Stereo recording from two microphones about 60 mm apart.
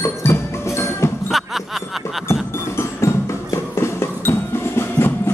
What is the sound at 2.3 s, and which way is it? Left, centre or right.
Music, left.